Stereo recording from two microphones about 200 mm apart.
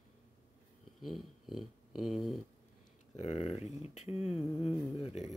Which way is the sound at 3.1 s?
35° left (ahead or behind).